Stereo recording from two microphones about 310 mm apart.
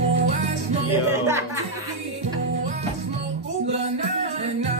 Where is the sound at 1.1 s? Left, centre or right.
Centre.